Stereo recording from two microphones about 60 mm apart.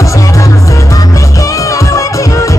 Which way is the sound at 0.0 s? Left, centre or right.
Left.